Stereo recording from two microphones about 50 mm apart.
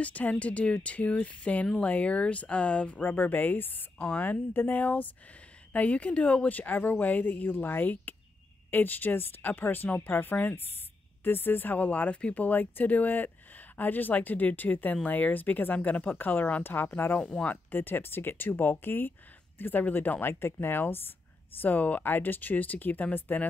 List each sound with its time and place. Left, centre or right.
0.0 s a woman's voice: left
17.2 s speech: left
17.6 s speech: left
21.5 s a woman's voice: left